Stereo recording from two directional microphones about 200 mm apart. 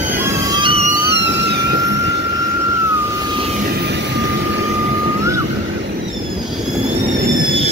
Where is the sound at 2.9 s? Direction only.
15° right (ahead or behind).